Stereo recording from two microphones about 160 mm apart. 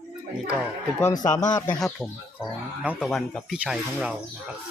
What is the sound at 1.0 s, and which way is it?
Speech, 25° left (ahead or behind).